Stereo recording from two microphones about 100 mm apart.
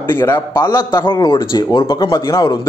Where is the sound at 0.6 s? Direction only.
45° left (ahead or behind).